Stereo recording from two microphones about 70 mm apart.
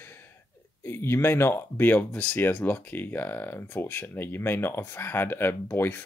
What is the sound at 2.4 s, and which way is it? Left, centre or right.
Speech, left.